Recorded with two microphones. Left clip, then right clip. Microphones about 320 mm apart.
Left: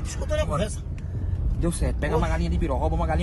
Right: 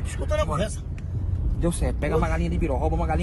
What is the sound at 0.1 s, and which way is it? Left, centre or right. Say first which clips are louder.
Speech: right 1 dB; centre.